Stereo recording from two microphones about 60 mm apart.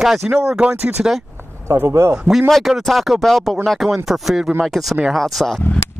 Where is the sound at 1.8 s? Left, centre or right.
Right.